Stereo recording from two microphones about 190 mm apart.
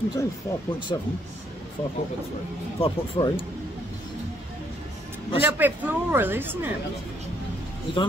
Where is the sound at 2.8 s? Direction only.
30° left (ahead or behind).